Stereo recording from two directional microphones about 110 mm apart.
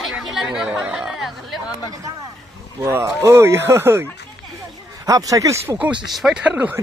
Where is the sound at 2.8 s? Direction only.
25° right (ahead or behind).